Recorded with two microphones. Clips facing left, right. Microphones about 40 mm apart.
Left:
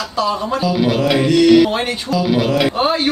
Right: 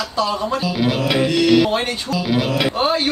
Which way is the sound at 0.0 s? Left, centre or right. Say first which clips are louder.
Left 2 dB; centre.